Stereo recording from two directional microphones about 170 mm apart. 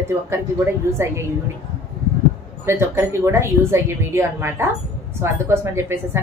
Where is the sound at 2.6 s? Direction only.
15° right (ahead or behind).